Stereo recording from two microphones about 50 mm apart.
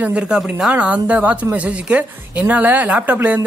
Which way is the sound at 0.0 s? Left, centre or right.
Right.